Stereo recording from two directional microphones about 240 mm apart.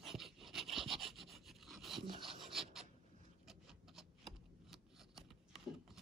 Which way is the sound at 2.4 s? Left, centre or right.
Centre.